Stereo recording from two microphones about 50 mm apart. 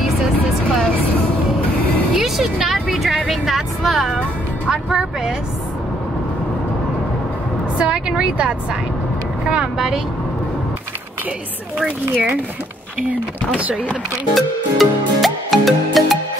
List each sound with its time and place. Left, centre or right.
2.1 s music: centre
3.3 s vehicle: centre
4.8 s speech: centre
7.8 s a woman's voice: right
13.6 s a woman's voice: right
14.3 s music: centre